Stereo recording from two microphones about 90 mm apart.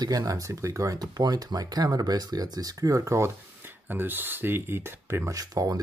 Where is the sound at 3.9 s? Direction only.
20° right (ahead or behind); by 5.7 s 40° right (ahead or behind).